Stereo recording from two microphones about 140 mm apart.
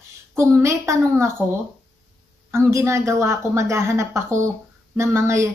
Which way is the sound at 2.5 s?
20° right (ahead or behind).